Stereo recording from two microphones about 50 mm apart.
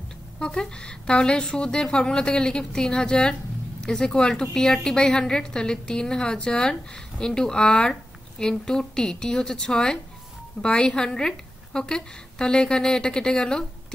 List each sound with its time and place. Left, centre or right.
0.4 s a woman's voice: centre